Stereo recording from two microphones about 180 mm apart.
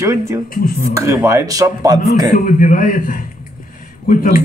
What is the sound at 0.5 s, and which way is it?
Speech, 50° left (ahead or behind).